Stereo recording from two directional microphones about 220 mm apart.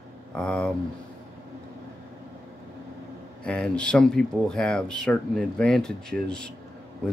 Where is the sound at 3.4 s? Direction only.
5° left (ahead or behind).